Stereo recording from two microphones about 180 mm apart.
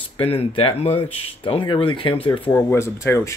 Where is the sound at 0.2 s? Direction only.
30° left (ahead or behind).